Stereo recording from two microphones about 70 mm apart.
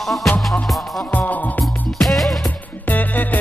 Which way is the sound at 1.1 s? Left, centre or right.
Left.